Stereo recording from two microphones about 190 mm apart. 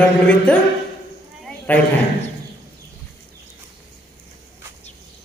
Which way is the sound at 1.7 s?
10° left (ahead or behind).